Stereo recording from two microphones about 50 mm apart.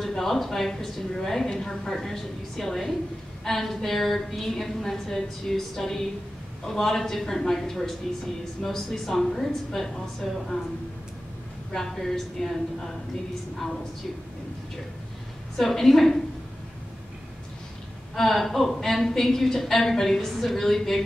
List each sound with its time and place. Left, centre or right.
0.0 s a woman's voice: centre
11.7 s a woman's voice: centre
15.5 s a woman's voice: centre
18.1 s a woman's voice: centre